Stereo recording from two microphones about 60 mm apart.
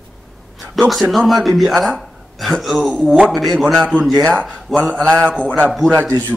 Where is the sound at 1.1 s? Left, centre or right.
Centre.